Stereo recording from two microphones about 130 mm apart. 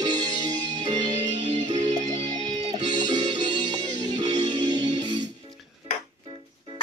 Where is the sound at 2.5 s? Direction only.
30° right (ahead or behind).